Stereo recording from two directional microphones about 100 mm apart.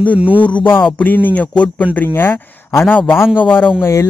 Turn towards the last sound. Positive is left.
turn(degrees=25)  # may be behind; listen again after turning